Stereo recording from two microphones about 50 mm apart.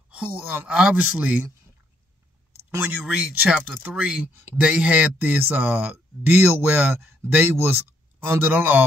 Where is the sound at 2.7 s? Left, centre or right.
Right.